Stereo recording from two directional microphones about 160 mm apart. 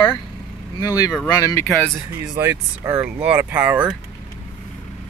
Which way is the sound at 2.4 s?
15° right (ahead or behind).